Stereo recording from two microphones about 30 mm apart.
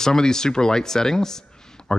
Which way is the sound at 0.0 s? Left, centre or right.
Centre.